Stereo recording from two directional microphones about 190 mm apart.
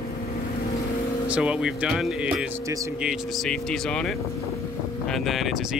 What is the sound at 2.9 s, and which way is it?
Speech, 5° right (ahead or behind).